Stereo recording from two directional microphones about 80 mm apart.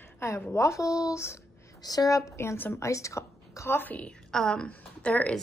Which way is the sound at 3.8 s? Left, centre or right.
Left.